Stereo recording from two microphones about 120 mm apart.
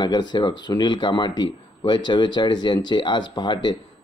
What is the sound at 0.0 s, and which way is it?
Speech, 35° left (ahead or behind).